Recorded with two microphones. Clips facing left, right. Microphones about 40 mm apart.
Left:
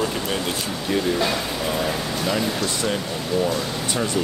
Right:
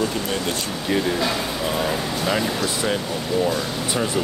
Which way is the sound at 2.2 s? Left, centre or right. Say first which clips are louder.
Right 1 dB; centre.